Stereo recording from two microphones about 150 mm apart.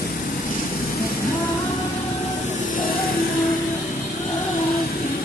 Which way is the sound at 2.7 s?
70° left (ahead or behind).